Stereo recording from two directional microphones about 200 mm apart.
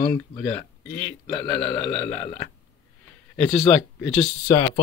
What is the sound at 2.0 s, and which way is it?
Speech, 35° left (ahead or behind).